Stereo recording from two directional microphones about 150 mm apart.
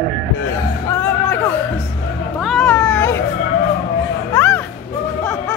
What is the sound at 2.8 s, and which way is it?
Baby cry, 20° left (ahead or behind).